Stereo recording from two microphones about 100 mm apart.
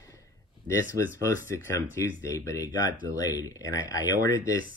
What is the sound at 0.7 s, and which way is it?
Speech, 30° left (ahead or behind).